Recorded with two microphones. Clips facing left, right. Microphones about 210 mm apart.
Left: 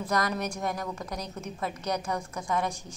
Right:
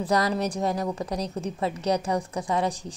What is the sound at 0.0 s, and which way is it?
A woman's voice, 30° right (ahead or behind).